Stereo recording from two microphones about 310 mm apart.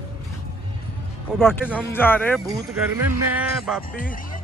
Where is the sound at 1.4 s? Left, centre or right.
Centre.